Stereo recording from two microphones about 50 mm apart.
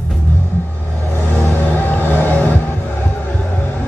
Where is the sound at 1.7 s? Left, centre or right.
Left.